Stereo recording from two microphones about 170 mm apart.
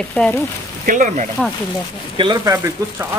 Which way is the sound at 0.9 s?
50° right (ahead or behind).